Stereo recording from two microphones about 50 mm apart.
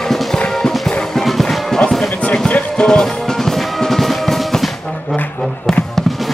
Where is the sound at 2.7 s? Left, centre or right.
Centre.